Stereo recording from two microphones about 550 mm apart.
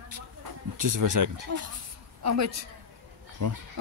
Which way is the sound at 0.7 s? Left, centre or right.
Right.